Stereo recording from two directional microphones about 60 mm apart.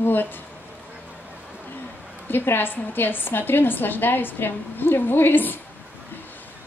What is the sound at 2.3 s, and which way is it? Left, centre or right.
A woman's voice, left.